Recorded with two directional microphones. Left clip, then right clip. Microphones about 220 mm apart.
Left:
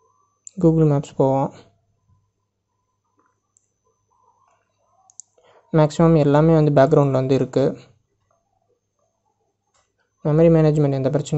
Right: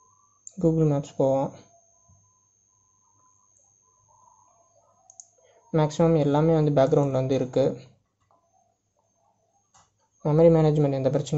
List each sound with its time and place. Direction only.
0.4 s speech: 25° left (ahead or behind)
5.1 s speech: 25° left (ahead or behind)
10.2 s speech: 20° left (ahead or behind)